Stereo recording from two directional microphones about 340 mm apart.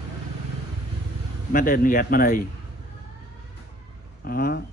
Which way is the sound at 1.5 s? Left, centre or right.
Left.